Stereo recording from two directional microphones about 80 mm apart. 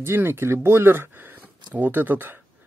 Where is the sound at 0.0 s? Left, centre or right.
Right.